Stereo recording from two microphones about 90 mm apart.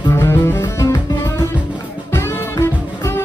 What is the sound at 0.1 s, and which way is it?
Music, 30° left (ahead or behind).